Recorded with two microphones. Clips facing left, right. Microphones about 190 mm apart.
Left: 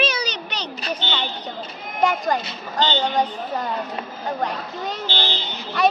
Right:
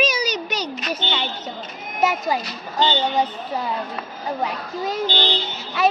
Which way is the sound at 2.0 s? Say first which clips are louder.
Even; 5° right (ahead or behind).